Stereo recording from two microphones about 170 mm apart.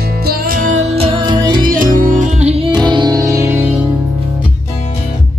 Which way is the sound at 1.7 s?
55° right (ahead or behind).